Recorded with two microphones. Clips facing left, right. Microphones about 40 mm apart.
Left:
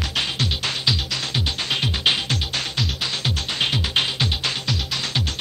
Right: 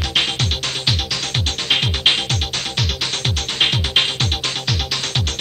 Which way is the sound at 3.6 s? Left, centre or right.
Right.